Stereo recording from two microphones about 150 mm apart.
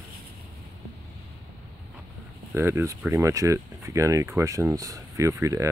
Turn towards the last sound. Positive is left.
turn(degrees=-20)  # may be behind; listen again after turning